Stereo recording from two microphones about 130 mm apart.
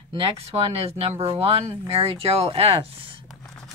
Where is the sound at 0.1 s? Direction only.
45° right (ahead or behind).